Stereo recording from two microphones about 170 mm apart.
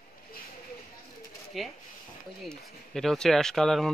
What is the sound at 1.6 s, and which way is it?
Speech, centre (ahead or behind).